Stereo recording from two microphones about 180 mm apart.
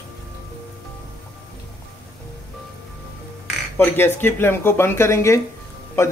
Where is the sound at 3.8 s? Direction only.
10° left (ahead or behind).